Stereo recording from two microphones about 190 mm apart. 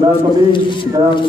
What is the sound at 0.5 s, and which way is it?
Speech, 25° left (ahead or behind).